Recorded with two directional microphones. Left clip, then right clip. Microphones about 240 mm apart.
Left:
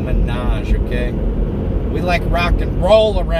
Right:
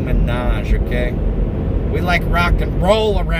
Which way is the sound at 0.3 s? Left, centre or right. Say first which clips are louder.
Right 2 dB; centre.